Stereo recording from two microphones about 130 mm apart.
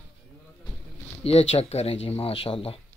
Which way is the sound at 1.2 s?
55° left (ahead or behind).